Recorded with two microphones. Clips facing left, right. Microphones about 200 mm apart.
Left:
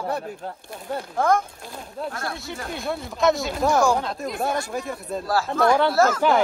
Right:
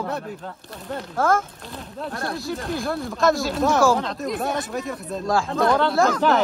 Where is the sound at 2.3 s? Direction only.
Centre (ahead or behind).